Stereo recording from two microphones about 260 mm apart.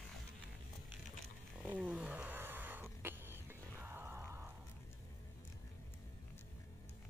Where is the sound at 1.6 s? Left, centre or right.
Centre.